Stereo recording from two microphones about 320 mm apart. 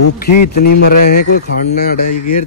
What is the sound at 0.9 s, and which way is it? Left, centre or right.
Speech, left.